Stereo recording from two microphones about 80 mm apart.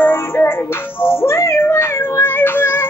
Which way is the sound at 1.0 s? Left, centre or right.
Left.